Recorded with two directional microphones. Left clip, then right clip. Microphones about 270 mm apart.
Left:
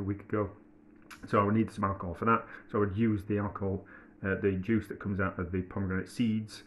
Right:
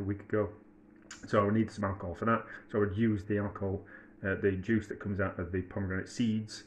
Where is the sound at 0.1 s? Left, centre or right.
Centre.